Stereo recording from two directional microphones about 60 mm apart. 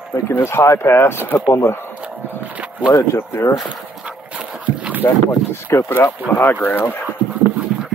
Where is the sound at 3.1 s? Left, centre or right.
Left.